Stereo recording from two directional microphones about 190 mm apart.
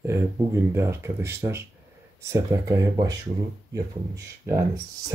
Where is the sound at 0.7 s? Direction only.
15° right (ahead or behind).